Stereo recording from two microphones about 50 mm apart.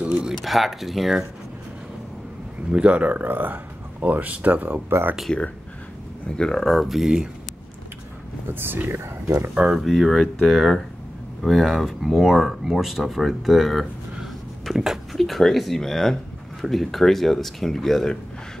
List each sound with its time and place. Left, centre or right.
0.4 s speech: centre
2.7 s speech: right
4.8 s speech: right
6.3 s speech: centre
6.6 s speech: centre
8.5 s speech: right
9.5 s speech: right
9.8 s speech: centre